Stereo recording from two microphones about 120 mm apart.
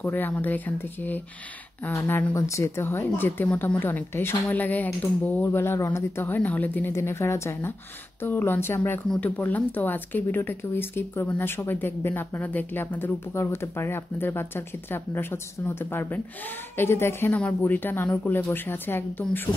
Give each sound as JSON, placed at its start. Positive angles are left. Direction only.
{"t": 0.0, "sound": "speech", "side_deg": 15}